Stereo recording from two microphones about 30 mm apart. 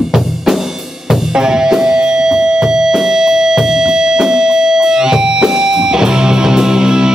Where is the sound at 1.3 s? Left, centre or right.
Right.